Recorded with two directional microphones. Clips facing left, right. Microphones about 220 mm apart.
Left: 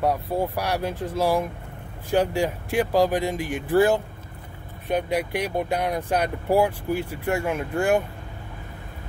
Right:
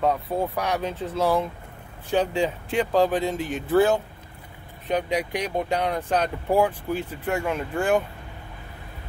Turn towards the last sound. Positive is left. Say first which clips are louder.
# left 1 dB
turn(degrees=10)  # may be behind; listen again after turning